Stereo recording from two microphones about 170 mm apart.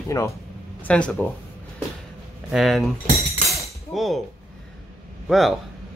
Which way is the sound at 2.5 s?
Centre (ahead or behind).